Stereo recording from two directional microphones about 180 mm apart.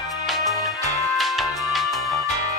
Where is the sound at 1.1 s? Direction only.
Centre (ahead or behind).